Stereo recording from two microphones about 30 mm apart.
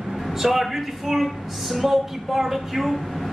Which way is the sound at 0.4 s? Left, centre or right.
Centre.